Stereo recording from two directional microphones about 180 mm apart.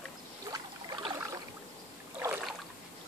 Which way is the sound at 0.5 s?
25° right (ahead or behind).